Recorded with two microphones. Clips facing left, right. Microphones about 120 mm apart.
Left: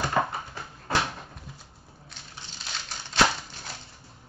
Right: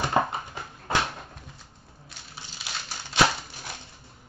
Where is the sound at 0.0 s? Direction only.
20° right (ahead or behind).